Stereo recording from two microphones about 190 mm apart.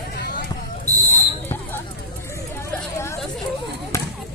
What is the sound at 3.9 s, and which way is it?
Basketball bounce, 15° left (ahead or behind).